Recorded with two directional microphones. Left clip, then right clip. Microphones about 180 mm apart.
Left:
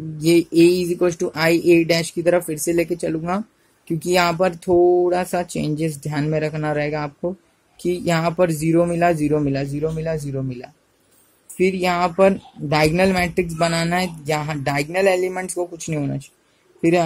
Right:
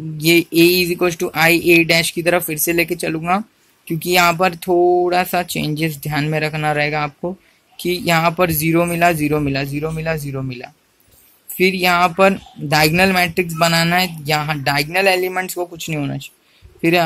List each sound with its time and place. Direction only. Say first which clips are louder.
0.2 s speech: right 2 dB; 5° left (ahead or behind)
4.6 s a sound: right 1 dB; 15° right (ahead or behind)
5.0 s speech: right 3 dB; 5° left (ahead or behind)